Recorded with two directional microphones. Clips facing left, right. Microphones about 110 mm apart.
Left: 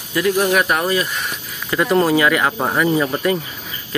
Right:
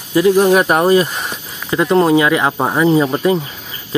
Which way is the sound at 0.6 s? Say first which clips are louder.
Right 6 dB; 35° right (ahead or behind).